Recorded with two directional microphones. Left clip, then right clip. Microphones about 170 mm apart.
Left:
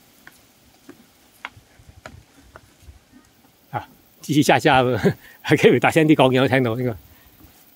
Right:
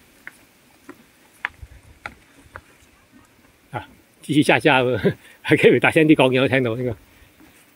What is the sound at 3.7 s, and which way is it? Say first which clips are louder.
Speech: left 2 dB; 10° left (ahead or behind).